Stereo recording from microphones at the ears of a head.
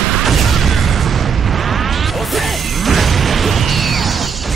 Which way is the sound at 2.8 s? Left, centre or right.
Right.